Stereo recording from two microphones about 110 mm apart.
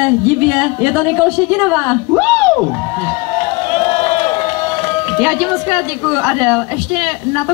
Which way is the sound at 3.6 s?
90° left.